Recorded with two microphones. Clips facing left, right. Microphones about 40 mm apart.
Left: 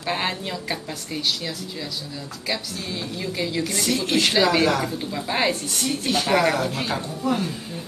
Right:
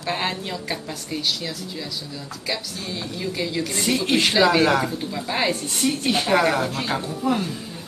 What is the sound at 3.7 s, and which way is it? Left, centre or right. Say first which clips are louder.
Speech: right 1 dB; right.